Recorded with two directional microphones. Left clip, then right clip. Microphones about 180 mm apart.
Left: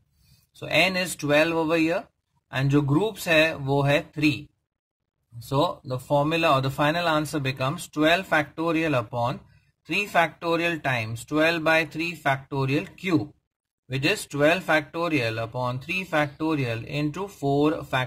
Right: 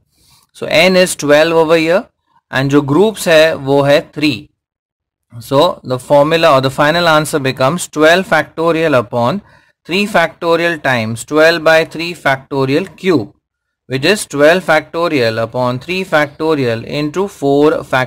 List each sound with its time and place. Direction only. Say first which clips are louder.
0.6 s speech: right 13 dB; 30° right (ahead or behind)
5.5 s speech: right 14 dB; 30° right (ahead or behind)